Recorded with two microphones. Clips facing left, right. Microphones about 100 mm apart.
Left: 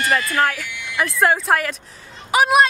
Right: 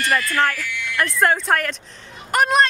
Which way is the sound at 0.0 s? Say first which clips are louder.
Left 1 dB; 25° left (ahead or behind).